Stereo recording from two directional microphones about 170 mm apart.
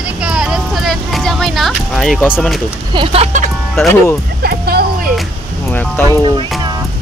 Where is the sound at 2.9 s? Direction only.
35° right (ahead or behind).